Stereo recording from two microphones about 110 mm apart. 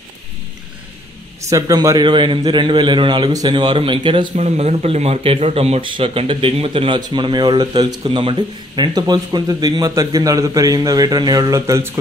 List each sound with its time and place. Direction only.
1.5 s a man's voice: 30° right (ahead or behind); by 4.3 s 50° right (ahead or behind)
4.4 s speech: 80° right; by 7.0 s 60° right (ahead or behind)
7.0 s speech: 40° right (ahead or behind)
8.0 s speech: 55° right (ahead or behind); by 12.0 s 25° right (ahead or behind)